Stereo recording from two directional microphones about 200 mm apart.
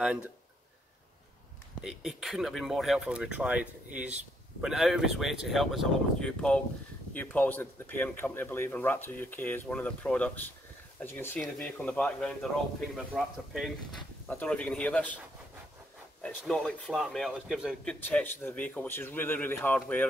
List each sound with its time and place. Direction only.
0.0 s speech: 5° right (ahead or behind)
1.8 s speech: centre (ahead or behind)
16.2 s speech: 5° left (ahead or behind)
18.0 s speech: 10° left (ahead or behind)